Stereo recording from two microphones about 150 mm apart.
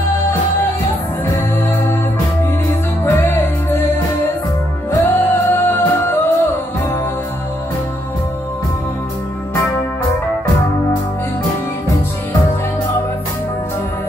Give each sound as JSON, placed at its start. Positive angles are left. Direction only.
{"t": 3.1, "sound": "music", "side_deg": 15}
{"t": 5.0, "sound": "music", "side_deg": 15}